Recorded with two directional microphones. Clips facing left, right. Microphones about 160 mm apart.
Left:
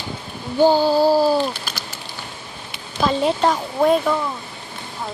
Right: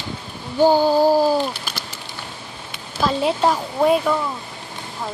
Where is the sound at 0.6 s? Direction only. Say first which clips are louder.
Even; 15° right (ahead or behind).